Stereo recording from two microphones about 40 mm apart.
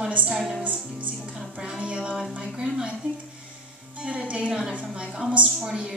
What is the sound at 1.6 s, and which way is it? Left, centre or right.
A woman's voice, right.